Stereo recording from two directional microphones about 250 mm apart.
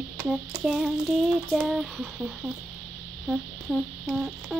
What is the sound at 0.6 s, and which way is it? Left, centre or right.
Humming, centre.